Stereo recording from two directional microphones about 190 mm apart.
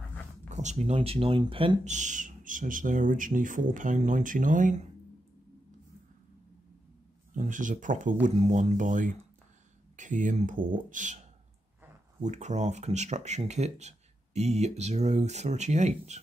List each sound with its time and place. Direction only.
0.5 s speech: 40° right (ahead or behind)
7.3 s speech: 40° right (ahead or behind)
12.2 s speech: 40° right (ahead or behind)